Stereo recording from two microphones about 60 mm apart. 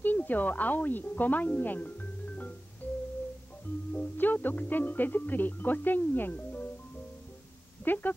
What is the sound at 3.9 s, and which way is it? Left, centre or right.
Speech, left.